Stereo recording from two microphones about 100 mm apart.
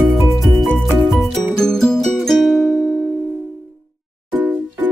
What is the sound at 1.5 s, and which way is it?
Music, 5° left (ahead or behind).